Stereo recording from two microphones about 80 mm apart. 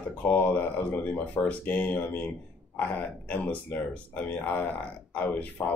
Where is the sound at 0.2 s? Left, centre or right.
Left.